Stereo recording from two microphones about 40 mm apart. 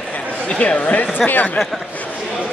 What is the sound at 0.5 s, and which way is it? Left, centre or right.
Speech, left.